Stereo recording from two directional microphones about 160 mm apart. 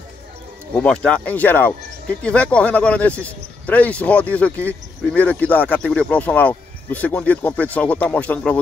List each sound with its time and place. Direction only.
0.7 s speech: 5° left (ahead or behind)